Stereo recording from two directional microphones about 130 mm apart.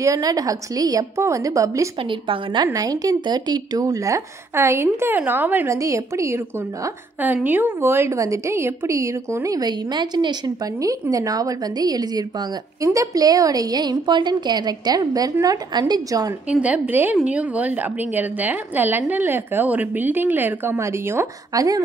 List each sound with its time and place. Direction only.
0.0 s a woman's voice: 25° right (ahead or behind)
2.0 s a woman's voice: 40° right (ahead or behind)
16.4 s a woman's voice: 10° right (ahead or behind); by 21.8 s 25° right (ahead or behind)